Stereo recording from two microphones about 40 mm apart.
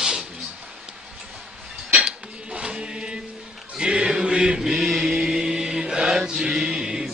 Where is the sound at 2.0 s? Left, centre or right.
Right.